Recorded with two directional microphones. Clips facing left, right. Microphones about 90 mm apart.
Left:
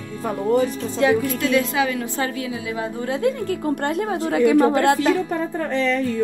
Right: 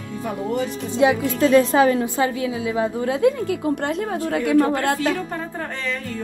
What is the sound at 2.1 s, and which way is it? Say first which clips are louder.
A woman's voice: right 3 dB; 20° right (ahead or behind).